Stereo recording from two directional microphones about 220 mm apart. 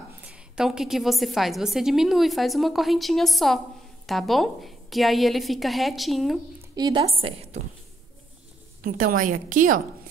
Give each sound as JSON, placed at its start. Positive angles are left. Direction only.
{"t": 0.2, "sound": "a woman's voice", "side_deg": -5}
{"t": 6.7, "sound": "a woman's voice", "side_deg": -15}
{"t": 8.8, "sound": "a woman's voice", "side_deg": -40}